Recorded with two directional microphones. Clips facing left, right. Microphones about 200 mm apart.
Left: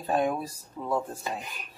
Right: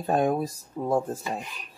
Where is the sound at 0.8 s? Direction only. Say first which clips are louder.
Right 6 dB; 35° right (ahead or behind).